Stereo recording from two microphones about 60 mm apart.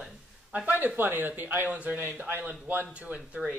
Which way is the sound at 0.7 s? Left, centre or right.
Right.